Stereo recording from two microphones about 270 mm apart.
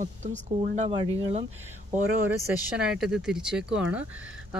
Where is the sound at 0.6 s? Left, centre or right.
Right.